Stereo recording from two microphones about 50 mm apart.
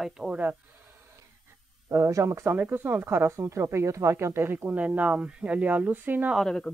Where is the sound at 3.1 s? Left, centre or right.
Right.